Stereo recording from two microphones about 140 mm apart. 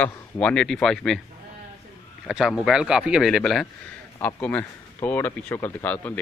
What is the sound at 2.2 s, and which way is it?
A man's voice, centre (ahead or behind).